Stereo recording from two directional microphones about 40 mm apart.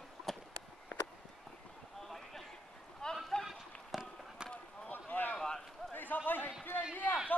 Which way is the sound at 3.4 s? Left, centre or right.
Centre.